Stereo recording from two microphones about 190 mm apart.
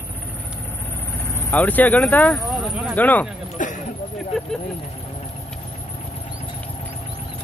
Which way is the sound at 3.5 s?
40° left (ahead or behind).